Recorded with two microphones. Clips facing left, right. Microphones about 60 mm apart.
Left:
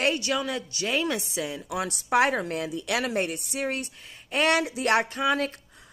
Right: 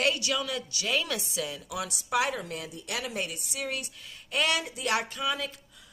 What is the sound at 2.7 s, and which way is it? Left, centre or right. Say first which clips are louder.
Speech: left 8 dB; left.